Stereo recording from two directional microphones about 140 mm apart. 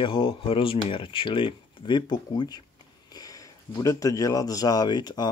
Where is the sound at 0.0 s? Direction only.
35° left (ahead or behind).